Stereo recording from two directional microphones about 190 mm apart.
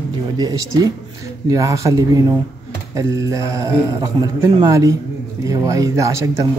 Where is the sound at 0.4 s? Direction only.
20° right (ahead or behind).